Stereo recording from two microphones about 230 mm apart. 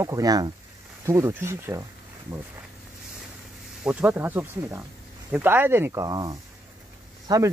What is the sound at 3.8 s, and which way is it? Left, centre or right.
Speech, centre.